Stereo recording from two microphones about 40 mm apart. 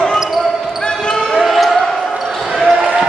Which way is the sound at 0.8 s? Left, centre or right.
Centre.